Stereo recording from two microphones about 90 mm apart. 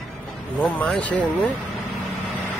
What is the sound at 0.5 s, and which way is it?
Speech, 15° left (ahead or behind).